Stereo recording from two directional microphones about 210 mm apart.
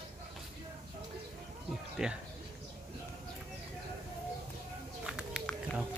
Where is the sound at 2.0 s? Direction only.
Centre (ahead or behind).